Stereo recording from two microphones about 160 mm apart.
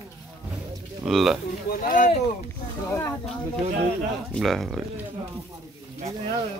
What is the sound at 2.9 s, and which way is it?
Speech, 15° left (ahead or behind).